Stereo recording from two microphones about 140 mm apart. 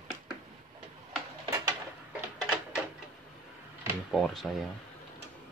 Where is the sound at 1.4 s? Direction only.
20° right (ahead or behind).